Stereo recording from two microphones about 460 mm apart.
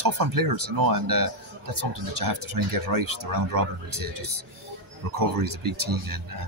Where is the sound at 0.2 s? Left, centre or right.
Right.